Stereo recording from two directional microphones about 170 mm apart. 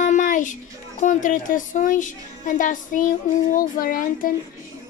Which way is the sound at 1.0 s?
50° left (ahead or behind).